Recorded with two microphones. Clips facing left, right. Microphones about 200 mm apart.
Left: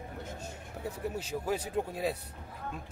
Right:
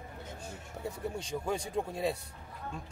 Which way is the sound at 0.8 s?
5° left (ahead or behind).